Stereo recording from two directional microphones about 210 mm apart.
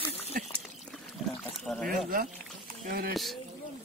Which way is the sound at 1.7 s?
Centre (ahead or behind).